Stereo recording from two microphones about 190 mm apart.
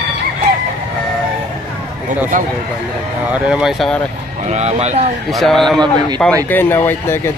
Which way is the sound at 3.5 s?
5° right (ahead or behind).